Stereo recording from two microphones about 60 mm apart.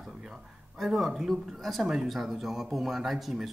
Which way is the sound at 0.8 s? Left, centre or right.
Centre.